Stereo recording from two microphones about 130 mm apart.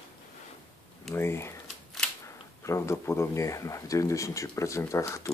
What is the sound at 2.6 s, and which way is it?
Speech, 20° left (ahead or behind).